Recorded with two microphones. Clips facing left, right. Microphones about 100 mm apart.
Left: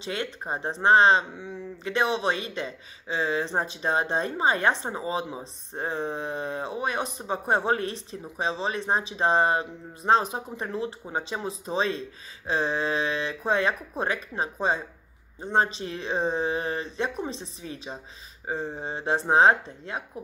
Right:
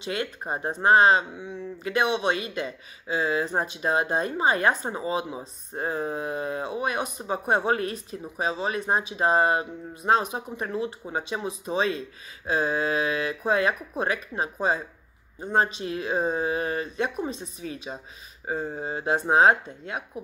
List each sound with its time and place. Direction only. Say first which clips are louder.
0.0 s speech: right 1 dB; 30° left (ahead or behind)